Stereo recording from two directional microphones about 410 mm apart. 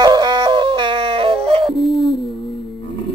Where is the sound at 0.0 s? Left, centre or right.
Centre.